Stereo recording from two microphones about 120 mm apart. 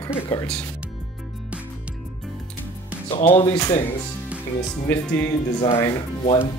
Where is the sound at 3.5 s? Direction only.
30° left (ahead or behind).